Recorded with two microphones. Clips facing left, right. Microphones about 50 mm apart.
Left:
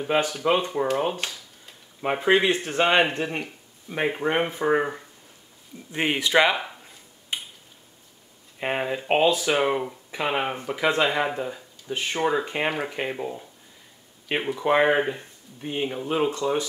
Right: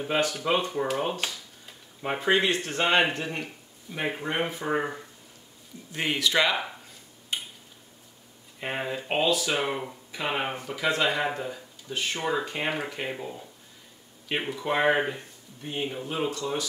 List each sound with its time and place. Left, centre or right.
0.1 s speech: centre
4.7 s speech: centre
5.9 s speech: left
8.5 s speech: left
11.2 s speech: centre
11.9 s speech: left
12.6 s speech: centre
12.9 s speech: centre
14.4 s speech: centre